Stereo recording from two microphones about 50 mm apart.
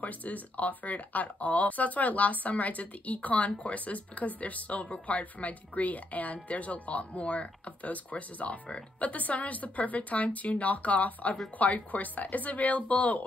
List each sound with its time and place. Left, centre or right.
0.0 s speech: left